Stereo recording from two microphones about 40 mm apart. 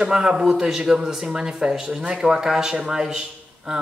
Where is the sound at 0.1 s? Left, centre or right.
Centre.